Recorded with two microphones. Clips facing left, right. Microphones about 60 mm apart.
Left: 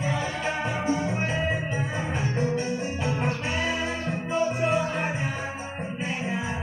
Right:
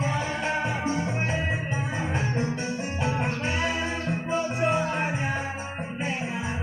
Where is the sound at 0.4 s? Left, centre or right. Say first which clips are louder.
Right 1 dB; right.